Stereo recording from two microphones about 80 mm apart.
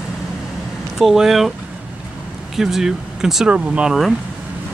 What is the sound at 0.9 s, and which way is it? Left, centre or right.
Speech, centre.